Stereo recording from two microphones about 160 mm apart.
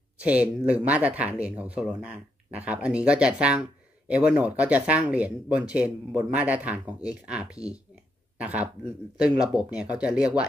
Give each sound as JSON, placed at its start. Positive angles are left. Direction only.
{"t": 0.2, "sound": "speech", "side_deg": -10}